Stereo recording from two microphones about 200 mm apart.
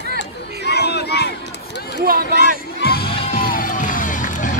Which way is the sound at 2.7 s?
50° left (ahead or behind).